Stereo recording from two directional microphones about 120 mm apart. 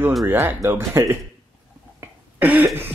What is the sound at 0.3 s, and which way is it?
Speech, 15° right (ahead or behind).